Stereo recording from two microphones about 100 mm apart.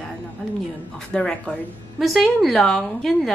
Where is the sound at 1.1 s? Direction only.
10° left (ahead or behind).